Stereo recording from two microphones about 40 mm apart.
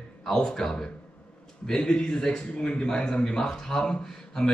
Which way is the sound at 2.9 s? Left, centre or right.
Centre.